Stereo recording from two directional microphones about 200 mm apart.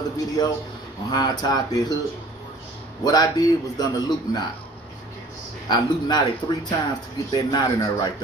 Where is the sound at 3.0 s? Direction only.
20° left (ahead or behind).